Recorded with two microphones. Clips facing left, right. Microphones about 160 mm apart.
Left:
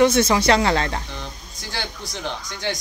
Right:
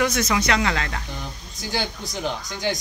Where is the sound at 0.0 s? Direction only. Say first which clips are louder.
Left 6 dB; 30° left (ahead or behind).